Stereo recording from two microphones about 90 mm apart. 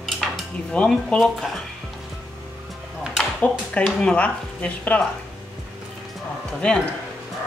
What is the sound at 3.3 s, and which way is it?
Speech, 15° left (ahead or behind).